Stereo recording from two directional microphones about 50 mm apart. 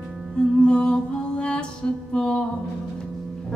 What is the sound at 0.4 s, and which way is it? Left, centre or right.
Music, centre.